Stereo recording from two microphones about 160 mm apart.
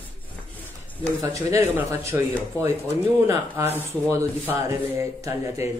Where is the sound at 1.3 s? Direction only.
20° right (ahead or behind).